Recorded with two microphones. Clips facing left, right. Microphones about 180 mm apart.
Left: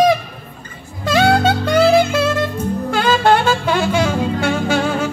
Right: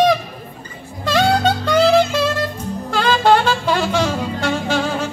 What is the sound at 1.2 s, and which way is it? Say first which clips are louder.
Music: left 3 dB; 55° left (ahead or behind).